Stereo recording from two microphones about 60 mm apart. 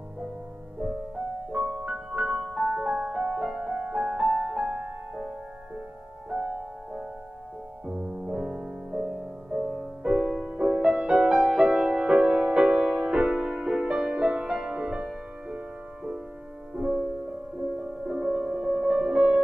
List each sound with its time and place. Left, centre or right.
1.5 s music: centre
6.3 s music: centre
10.7 s music: centre